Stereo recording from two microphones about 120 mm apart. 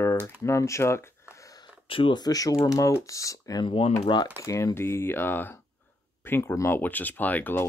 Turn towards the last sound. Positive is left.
turn(degrees=15)  # may be behind; listen again after turning